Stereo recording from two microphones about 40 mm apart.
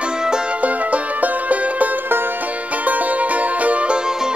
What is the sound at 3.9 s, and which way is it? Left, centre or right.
Music, centre.